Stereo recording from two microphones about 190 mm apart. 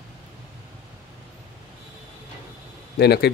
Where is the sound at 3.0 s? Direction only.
60° left (ahead or behind).